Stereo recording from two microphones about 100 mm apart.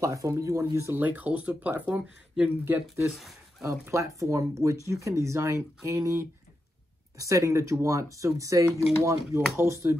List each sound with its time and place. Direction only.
0.0 s speech: 35° right (ahead or behind); by 2.8 s 15° right (ahead or behind)
3.1 s speech: centre (ahead or behind)
3.8 s speech: 30° right (ahead or behind)